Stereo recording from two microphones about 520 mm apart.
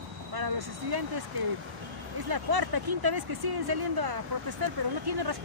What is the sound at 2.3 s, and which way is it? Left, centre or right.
Speech, right.